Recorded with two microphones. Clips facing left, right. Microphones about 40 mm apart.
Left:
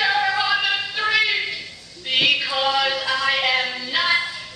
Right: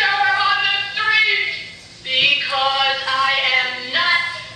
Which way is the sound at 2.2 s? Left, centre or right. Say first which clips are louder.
Right 3 dB; centre.